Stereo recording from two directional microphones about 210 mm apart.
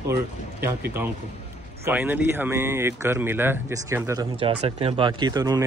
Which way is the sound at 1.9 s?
10° right (ahead or behind).